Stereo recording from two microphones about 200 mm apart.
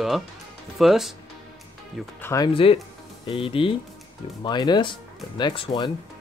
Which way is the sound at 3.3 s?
25° left (ahead or behind).